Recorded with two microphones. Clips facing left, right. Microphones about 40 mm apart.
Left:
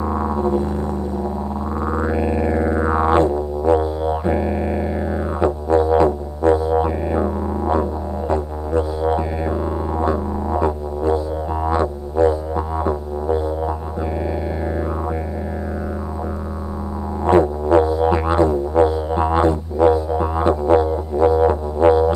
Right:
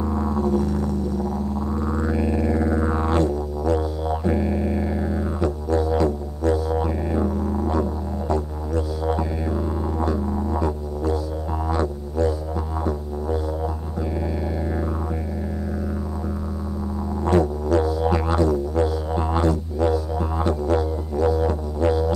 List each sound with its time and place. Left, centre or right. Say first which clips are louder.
0.0 s music: left 3 dB; left
17.2 s music: left 5 dB; left